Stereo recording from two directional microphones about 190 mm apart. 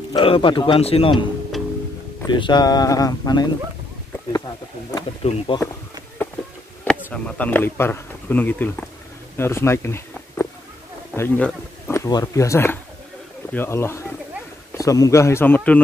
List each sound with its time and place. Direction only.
0.1 s speech: 25° left (ahead or behind)
2.2 s speech: 25° left (ahead or behind)
4.9 s speech: 25° left (ahead or behind)
6.8 s speech: 5° left (ahead or behind)